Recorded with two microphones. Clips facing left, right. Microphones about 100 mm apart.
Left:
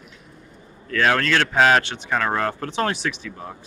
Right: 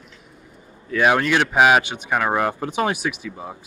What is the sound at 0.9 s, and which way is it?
Speech, 15° right (ahead or behind).